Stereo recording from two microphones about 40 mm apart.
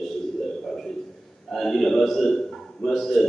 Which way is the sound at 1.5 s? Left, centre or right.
Centre.